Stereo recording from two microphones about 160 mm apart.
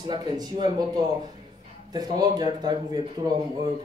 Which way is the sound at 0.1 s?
25° right (ahead or behind).